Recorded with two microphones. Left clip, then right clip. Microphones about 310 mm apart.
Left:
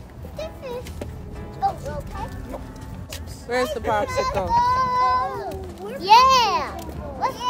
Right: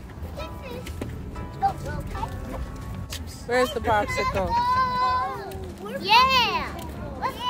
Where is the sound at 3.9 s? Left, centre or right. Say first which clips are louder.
Left 1 dB; left.